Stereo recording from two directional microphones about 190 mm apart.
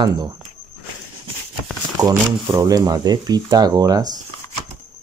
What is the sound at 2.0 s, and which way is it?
Speech, 20° right (ahead or behind).